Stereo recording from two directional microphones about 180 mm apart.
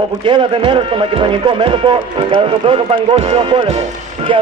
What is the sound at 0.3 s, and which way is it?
A man's voice, 30° right (ahead or behind).